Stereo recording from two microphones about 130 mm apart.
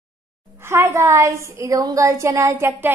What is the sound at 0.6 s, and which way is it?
A woman's voice, 20° right (ahead or behind).